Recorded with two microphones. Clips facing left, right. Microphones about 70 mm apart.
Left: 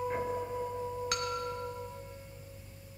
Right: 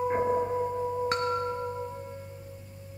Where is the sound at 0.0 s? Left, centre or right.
Right.